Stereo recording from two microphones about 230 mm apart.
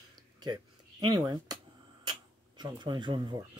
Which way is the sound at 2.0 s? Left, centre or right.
Centre.